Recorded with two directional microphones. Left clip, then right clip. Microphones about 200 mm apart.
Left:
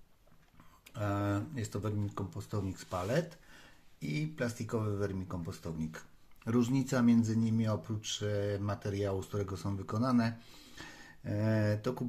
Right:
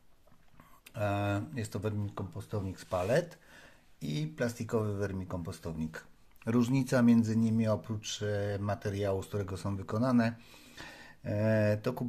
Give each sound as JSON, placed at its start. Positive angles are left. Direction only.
{"t": 0.9, "sound": "speech", "side_deg": -25}